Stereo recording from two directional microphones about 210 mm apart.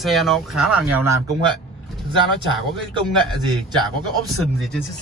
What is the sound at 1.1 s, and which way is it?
Speech, 15° right (ahead or behind).